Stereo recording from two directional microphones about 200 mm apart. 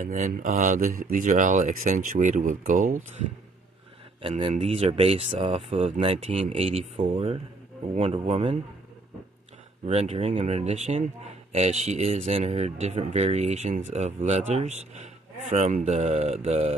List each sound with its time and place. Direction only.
0.0 s speech: 40° right (ahead or behind)
4.2 s speech: 30° right (ahead or behind)
9.8 s speech: 30° right (ahead or behind)